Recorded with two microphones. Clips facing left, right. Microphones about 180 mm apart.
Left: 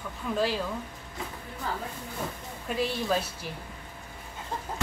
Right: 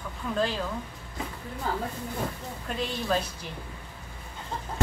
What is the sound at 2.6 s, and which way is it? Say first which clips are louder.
Speech: left 2 dB; 5° left (ahead or behind).